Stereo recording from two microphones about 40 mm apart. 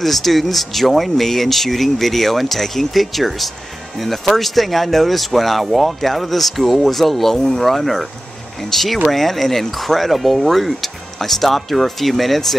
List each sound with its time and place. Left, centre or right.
0.0 s speech: centre